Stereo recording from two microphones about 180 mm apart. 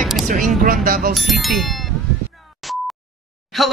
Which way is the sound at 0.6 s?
50° right (ahead or behind).